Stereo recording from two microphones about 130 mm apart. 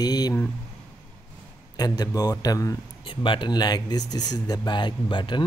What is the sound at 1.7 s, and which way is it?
Speech, 30° left (ahead or behind).